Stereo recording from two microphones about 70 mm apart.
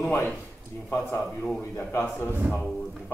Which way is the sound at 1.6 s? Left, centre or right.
Left.